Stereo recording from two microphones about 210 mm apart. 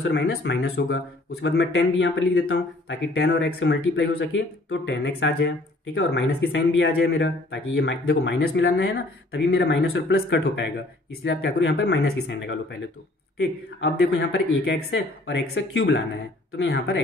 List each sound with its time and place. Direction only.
0.0 s a man's voice: 50° left (ahead or behind)